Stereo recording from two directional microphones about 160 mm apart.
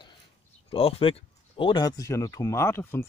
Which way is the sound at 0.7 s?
35° left (ahead or behind).